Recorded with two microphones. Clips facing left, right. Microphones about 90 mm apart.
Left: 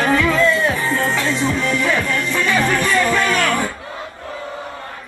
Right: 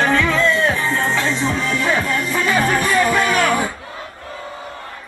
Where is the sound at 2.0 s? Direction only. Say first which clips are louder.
Even; 10° right (ahead or behind).